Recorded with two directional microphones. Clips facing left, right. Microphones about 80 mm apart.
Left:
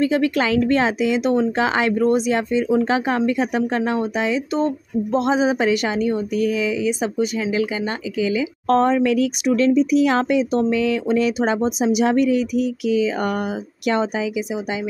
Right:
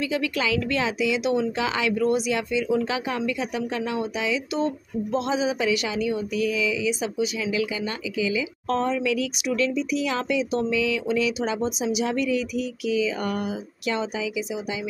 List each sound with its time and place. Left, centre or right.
0.0 s speech: left